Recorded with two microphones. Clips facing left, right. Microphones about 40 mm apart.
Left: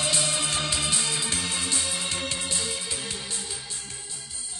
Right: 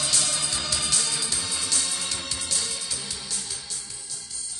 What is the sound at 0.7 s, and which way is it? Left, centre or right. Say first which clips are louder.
Music: left 1 dB; left.